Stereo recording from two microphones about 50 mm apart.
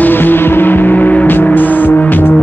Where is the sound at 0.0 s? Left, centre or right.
Left.